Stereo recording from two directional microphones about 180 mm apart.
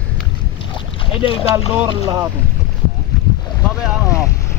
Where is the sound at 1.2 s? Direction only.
30° left (ahead or behind).